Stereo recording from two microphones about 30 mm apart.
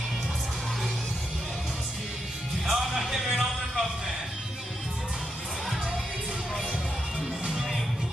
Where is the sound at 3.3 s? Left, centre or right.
Right.